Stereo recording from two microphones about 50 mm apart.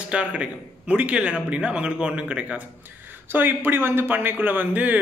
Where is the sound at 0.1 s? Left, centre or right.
Right.